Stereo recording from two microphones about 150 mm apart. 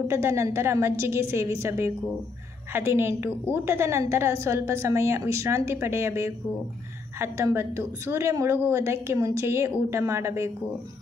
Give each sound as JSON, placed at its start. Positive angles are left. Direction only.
{"t": 0.1, "sound": "a woman's voice", "side_deg": -20}